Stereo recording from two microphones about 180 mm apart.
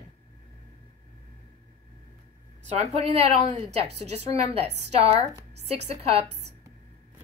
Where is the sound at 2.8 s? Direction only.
35° right (ahead or behind).